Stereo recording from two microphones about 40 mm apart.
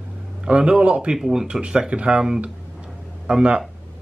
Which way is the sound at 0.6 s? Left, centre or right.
Right.